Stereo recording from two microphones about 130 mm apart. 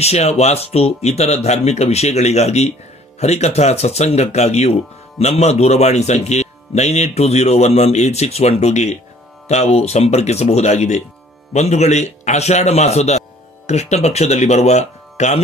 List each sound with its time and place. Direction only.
0.0 s speech: 55° left (ahead or behind)